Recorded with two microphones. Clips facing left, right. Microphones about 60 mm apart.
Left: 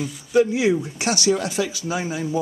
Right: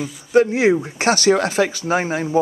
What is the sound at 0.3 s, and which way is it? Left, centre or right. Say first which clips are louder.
Speech: right 3 dB; right.